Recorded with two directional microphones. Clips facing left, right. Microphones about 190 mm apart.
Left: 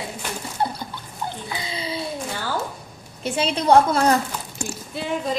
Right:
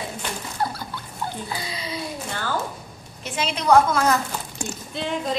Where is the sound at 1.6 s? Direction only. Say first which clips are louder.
Left 2 dB; 25° left (ahead or behind).